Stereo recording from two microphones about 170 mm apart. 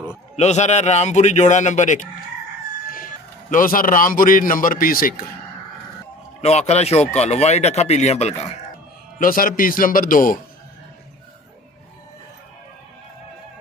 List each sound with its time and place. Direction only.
0.4 s a man's voice: 40° left (ahead or behind)
6.4 s speech: 40° left (ahead or behind)
9.2 s speech: 55° left (ahead or behind)